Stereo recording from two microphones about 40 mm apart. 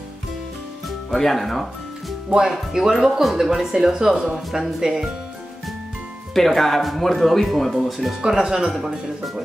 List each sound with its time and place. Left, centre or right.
0.8 s music: centre
2.2 s speech: right
2.7 s speech: centre
6.3 s speech: centre
8.4 s speech: centre